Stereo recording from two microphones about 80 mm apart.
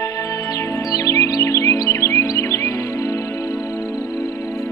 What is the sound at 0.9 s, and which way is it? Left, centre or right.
Music, left.